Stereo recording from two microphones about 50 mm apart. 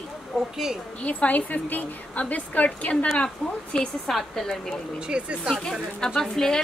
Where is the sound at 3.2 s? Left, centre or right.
Centre.